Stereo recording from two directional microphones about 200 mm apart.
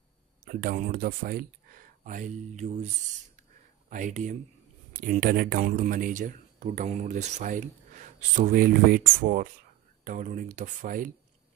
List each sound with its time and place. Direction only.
0.5 s speech: 45° right (ahead or behind)
3.9 s speech: 40° right (ahead or behind)